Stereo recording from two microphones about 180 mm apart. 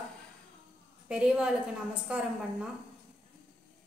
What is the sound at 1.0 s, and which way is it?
A woman's voice, 5° right (ahead or behind).